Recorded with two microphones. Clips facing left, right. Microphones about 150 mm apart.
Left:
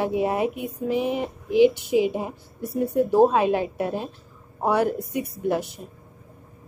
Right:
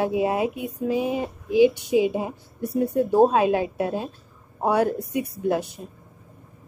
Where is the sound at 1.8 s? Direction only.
20° right (ahead or behind).